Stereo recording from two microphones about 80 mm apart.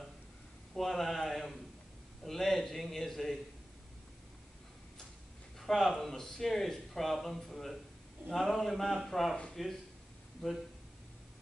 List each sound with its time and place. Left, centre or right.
0.7 s a sound: centre
5.6 s speech: centre
10.4 s speech: centre